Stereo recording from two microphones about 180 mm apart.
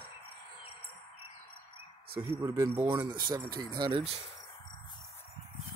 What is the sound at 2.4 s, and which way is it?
Speech, 15° right (ahead or behind).